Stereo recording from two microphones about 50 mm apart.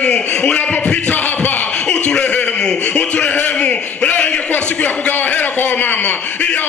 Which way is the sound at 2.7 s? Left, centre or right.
Left.